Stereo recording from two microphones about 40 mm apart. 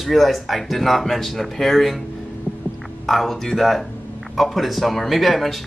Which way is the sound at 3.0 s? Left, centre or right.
Centre.